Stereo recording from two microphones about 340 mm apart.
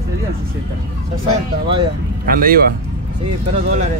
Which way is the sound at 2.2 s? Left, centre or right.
Right.